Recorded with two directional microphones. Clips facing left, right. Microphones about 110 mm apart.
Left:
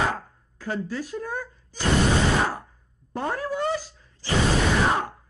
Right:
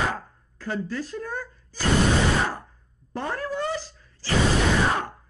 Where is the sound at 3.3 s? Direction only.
15° left (ahead or behind).